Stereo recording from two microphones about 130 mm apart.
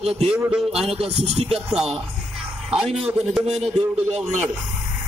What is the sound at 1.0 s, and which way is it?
Speech, 50° right (ahead or behind).